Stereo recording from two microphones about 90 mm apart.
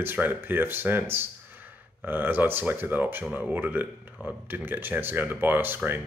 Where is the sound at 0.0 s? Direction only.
20° right (ahead or behind).